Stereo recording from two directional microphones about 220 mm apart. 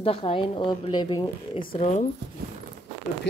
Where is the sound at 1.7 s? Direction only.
30° left (ahead or behind).